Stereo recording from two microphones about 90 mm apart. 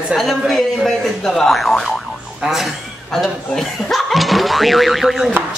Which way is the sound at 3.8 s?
Centre (ahead or behind).